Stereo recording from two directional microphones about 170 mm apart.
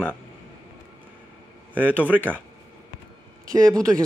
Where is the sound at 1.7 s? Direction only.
10° right (ahead or behind).